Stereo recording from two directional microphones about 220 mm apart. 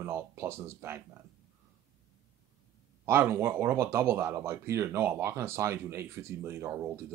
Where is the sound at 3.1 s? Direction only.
10° right (ahead or behind).